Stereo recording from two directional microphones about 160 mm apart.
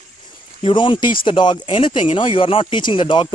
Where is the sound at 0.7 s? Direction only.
30° left (ahead or behind).